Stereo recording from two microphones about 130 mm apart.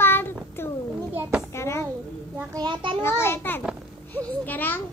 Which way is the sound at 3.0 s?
20° left (ahead or behind).